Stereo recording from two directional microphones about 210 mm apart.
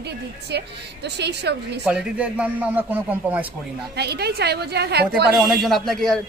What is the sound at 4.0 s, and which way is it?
A woman's voice, 50° right (ahead or behind).